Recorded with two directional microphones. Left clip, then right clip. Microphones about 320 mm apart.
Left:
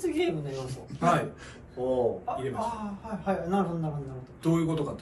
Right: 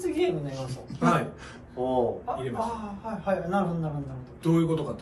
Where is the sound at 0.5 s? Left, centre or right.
Centre.